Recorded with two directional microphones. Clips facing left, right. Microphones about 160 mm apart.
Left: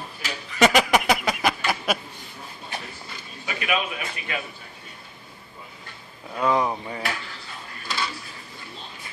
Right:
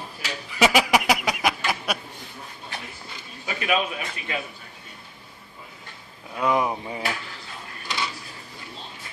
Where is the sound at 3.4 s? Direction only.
35° right (ahead or behind).